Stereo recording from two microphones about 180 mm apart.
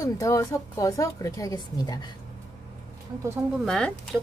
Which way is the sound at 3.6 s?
Centre (ahead or behind).